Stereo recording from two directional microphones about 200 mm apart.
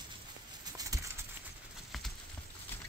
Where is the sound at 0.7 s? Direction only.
15° right (ahead or behind).